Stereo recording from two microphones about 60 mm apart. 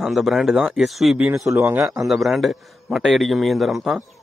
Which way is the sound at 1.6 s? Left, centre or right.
Right.